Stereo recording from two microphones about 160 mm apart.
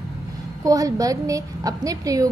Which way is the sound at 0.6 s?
20° right (ahead or behind).